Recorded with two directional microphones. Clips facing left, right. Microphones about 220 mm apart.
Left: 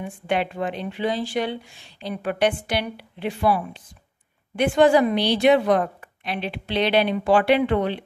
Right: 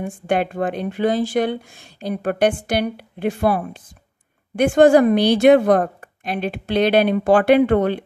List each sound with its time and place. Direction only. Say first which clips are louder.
0.0 s speech: right 4 dB; 45° right (ahead or behind)